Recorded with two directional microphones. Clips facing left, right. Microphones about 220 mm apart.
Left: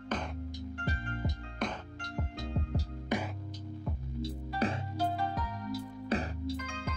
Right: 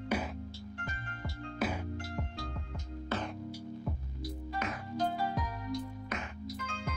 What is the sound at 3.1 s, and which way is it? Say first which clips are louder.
Music: left 3 dB; 15° left (ahead or behind).